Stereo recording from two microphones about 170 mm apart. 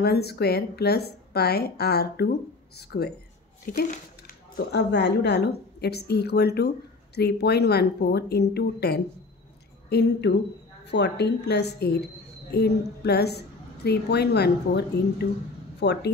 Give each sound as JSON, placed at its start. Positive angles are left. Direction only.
{"t": 0.0, "sound": "a woman's voice", "side_deg": 70}
{"t": 3.8, "sound": "a woman's voice", "side_deg": 50}